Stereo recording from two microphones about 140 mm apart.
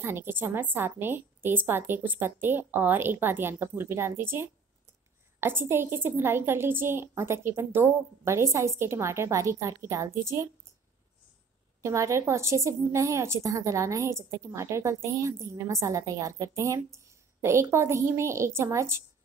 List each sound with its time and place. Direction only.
0.0 s a woman's voice: 15° right (ahead or behind)
11.8 s a woman's voice: 20° right (ahead or behind)